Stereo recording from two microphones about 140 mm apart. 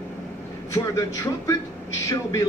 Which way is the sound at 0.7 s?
20° left (ahead or behind).